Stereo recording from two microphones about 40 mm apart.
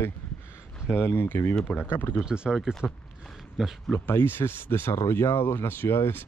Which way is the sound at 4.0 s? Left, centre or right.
Left.